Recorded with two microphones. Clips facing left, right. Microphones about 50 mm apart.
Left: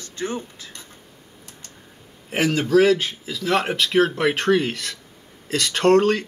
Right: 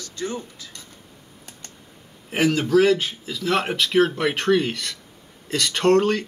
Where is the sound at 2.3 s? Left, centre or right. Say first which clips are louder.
Even; centre.